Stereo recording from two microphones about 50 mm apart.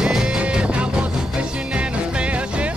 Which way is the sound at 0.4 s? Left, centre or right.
Right.